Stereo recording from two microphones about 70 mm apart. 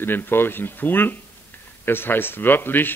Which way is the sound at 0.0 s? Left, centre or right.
Left.